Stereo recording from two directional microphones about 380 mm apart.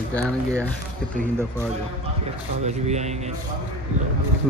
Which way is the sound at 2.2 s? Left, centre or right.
Centre.